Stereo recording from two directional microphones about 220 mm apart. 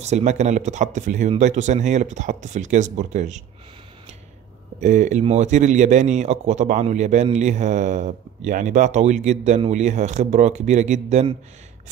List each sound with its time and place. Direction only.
0.0 s a man's voice: 30° right (ahead or behind)
4.7 s a man's voice: 35° right (ahead or behind)